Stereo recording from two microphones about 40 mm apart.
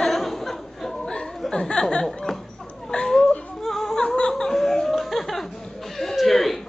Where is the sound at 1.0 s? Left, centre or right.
Left.